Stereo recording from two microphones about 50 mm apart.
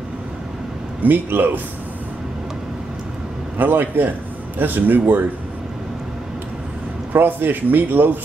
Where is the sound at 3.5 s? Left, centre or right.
Right.